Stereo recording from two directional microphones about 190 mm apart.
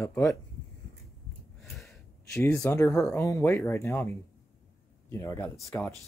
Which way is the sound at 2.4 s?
15° left (ahead or behind).